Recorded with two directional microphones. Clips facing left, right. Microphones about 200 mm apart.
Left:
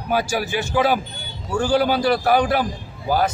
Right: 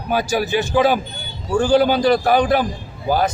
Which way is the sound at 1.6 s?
20° right (ahead or behind).